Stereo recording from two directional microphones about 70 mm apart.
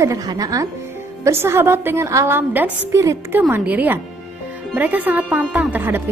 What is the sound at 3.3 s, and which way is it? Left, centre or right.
A woman's voice, right.